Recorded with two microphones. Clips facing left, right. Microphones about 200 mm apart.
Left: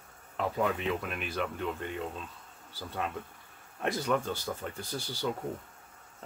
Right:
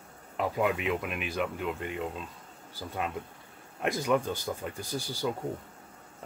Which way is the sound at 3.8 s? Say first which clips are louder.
Right 2 dB; 15° right (ahead or behind).